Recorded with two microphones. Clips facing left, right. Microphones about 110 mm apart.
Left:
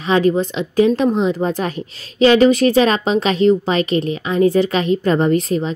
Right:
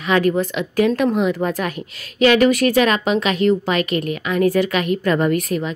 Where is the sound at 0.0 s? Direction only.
25° left (ahead or behind).